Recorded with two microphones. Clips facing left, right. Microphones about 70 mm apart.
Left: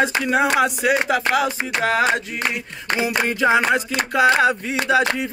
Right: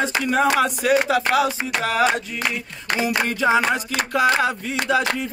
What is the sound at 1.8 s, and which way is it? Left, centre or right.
Music, left.